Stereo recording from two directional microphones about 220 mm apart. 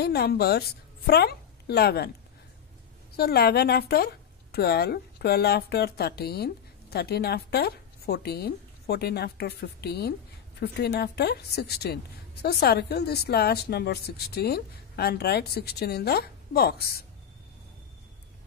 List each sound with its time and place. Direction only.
0.0 s a woman's voice: 45° left (ahead or behind)
3.2 s a woman's voice: 45° left (ahead or behind)